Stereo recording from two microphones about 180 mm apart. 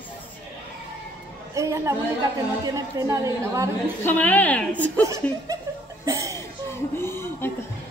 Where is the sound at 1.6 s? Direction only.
15° right (ahead or behind).